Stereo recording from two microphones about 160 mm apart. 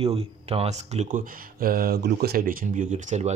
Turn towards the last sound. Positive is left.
turn(degrees=-50)  # may be behind; listen again after turning